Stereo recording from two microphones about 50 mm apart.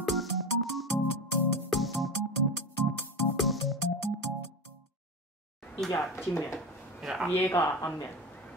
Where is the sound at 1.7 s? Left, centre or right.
Centre.